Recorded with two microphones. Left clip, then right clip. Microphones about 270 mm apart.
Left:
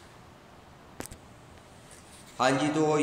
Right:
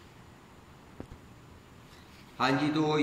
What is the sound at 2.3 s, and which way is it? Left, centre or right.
Speech, centre.